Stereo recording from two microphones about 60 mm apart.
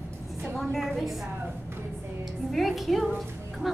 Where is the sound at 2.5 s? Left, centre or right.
Centre.